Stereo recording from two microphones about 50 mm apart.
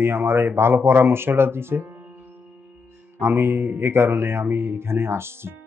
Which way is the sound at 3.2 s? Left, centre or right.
Right.